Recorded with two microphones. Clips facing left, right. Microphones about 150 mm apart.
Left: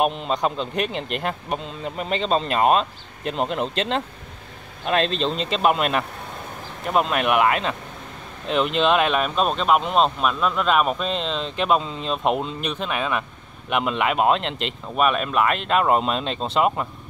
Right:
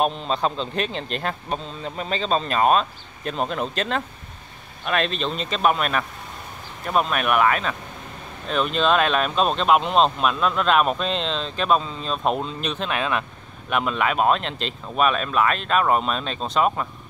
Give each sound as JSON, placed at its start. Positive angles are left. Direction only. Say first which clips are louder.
{"t": 0.0, "sound": "speech", "louder": "left 1 dB", "side_deg": 15}
{"t": 8.7, "sound": "speech", "louder": "even", "side_deg": 15}